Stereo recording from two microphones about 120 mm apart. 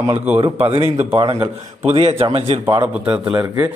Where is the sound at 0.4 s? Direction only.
45° right (ahead or behind).